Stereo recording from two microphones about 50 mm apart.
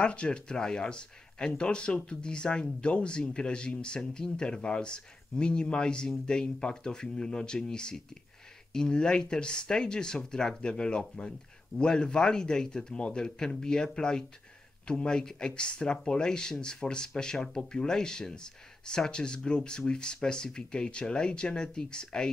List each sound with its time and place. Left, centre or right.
0.0 s speech: left